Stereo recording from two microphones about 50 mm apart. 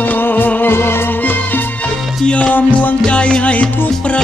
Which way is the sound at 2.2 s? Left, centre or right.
Left.